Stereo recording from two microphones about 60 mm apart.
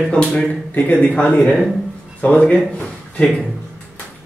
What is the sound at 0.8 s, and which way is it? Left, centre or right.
Speech, left.